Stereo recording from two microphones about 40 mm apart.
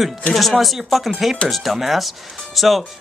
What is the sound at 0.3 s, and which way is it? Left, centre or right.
Speech, centre.